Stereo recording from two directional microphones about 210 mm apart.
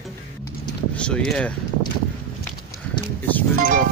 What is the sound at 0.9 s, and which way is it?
Speech, 5° left (ahead or behind).